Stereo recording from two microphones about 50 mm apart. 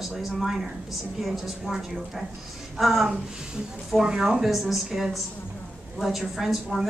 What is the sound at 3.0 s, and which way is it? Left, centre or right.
Speech, centre.